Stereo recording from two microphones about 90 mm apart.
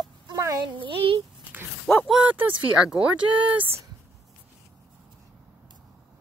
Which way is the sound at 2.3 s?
20° right (ahead or behind).